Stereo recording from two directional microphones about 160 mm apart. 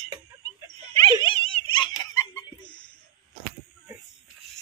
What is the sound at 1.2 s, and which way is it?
Giggle, 35° left (ahead or behind).